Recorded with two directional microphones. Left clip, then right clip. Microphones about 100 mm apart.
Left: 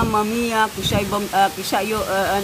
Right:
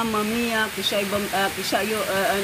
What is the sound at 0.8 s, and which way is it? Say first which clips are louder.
Speech: left 2 dB; 30° left (ahead or behind).